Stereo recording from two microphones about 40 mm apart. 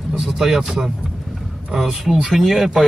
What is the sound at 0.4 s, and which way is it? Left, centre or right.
Speech, centre.